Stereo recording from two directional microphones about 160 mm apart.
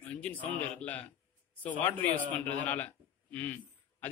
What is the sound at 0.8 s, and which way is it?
A man's voice, 10° left (ahead or behind).